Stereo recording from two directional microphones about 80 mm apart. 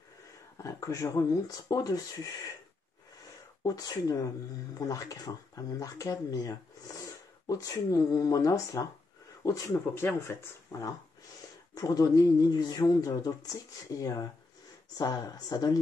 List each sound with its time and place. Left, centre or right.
0.6 s speech: left
3.6 s speech: left
10.7 s speech: left